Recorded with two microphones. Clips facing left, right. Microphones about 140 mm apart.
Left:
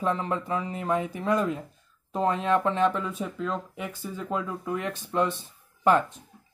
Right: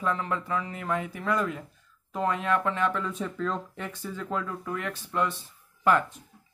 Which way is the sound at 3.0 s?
10° left (ahead or behind).